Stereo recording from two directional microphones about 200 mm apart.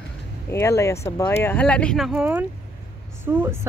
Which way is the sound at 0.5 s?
15° left (ahead or behind).